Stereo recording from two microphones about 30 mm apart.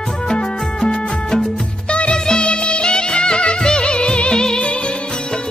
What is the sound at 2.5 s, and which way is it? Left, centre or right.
Music, left.